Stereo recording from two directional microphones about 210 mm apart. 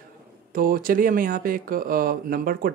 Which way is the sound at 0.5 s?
45° right (ahead or behind).